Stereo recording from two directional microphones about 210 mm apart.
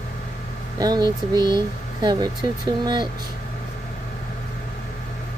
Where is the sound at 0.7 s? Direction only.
20° right (ahead or behind).